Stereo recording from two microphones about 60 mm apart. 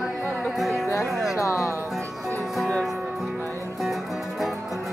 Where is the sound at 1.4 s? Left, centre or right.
Left.